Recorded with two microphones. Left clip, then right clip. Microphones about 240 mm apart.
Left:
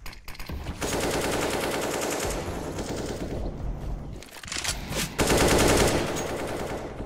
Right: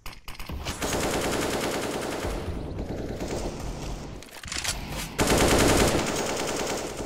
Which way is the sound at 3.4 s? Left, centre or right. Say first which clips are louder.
Right 4 dB; right.